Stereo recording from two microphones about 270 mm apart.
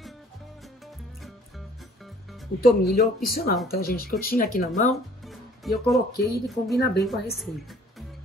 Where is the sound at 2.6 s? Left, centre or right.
Left.